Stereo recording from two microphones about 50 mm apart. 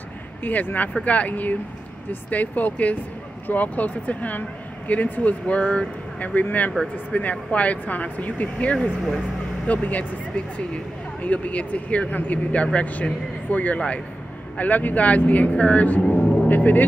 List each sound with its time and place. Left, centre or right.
0.4 s speech: left
5.5 s speech: left
11.2 s speech: left
14.6 s speech: left
16.0 s speech: centre
16.4 s speech: left